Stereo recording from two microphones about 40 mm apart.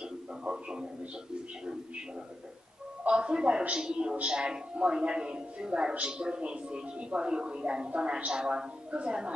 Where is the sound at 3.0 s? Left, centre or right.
Right.